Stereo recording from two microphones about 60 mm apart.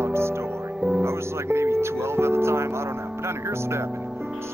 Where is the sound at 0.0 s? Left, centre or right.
Right.